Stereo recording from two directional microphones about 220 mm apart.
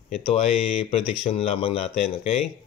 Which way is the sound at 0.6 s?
25° left (ahead or behind).